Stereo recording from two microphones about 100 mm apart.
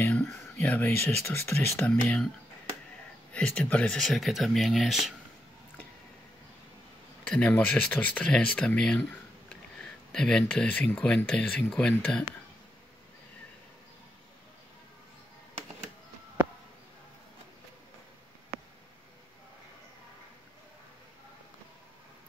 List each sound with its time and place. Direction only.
0.1 s a sound: 10° left (ahead or behind)
0.6 s speech: 20° left (ahead or behind)
1.9 s speech: 10° left (ahead or behind)
3.3 s speech: 10° left (ahead or behind)
7.2 s speech: 15° left (ahead or behind)